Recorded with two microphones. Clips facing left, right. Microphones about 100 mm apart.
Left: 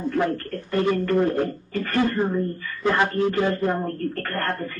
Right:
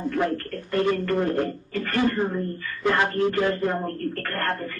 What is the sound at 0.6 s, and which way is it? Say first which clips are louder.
Speech: left 1 dB; 15° left (ahead or behind).